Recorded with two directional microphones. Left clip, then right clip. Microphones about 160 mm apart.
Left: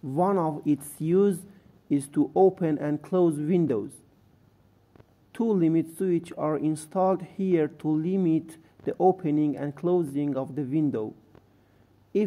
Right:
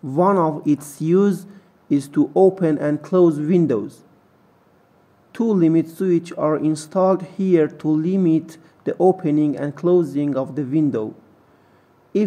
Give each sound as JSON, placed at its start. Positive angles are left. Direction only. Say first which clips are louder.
{"t": 0.1, "sound": "speech", "louder": "right 8 dB", "side_deg": 25}
{"t": 5.3, "sound": "speech", "louder": "right 7 dB", "side_deg": 30}